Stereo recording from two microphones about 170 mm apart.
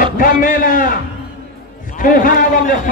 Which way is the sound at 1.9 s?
55° left (ahead or behind).